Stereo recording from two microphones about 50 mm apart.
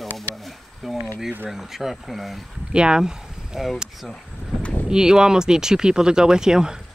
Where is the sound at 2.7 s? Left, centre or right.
Centre.